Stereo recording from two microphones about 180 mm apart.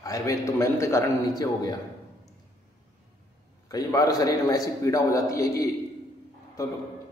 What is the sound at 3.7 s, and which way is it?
A man's voice, 20° left (ahead or behind).